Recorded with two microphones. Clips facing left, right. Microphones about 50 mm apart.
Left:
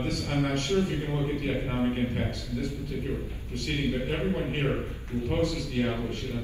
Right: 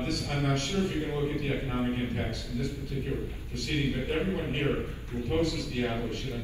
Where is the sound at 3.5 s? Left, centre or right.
Left.